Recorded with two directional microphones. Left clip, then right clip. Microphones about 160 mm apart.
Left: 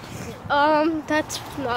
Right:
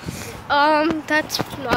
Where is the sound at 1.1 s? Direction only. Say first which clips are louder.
Right 4 dB; 10° left (ahead or behind).